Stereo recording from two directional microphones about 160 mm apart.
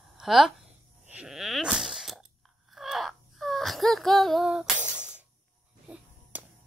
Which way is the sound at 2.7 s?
Centre (ahead or behind).